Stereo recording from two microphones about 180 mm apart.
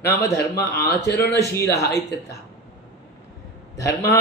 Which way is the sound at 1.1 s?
15° left (ahead or behind).